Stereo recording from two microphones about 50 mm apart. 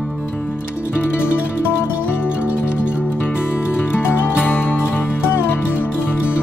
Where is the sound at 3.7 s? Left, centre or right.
Left.